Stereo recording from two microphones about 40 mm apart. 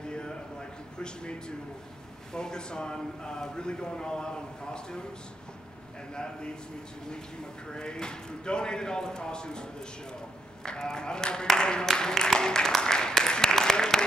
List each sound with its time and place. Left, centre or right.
0.0 s a sound: left
2.3 s speech: centre
7.6 s speech: left
11.9 s music: centre